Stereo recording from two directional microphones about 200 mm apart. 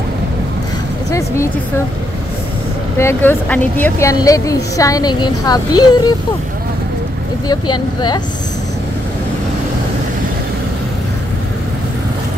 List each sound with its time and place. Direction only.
3.0 s speech: 10° left (ahead or behind)
7.4 s speech: 20° left (ahead or behind)